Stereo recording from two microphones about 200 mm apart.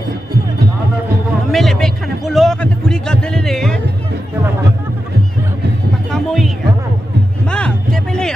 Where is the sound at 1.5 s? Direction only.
Centre (ahead or behind).